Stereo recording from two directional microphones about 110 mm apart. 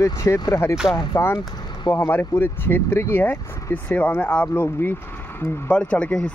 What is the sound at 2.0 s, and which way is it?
Speech, 20° left (ahead or behind).